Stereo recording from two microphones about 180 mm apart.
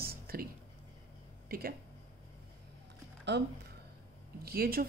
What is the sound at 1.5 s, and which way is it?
Speech, 55° right (ahead or behind).